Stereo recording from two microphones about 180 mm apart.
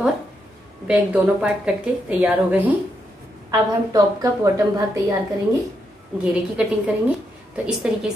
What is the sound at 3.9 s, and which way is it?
Speech, 20° right (ahead or behind).